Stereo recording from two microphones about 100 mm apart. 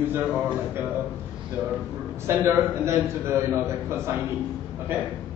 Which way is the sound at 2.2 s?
25° right (ahead or behind).